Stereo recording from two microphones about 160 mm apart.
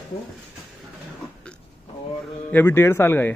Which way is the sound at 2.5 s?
15° left (ahead or behind).